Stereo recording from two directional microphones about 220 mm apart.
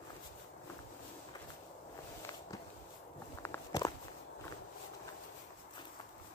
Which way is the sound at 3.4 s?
15° left (ahead or behind).